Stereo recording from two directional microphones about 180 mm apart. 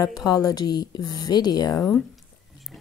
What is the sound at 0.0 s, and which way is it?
Speech, 20° left (ahead or behind).